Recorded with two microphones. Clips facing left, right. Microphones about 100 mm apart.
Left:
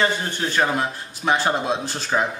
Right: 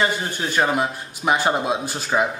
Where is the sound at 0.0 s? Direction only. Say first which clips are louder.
Even; 15° right (ahead or behind).